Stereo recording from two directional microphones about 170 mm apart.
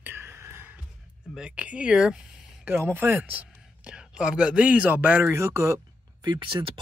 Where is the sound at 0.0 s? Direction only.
15° right (ahead or behind).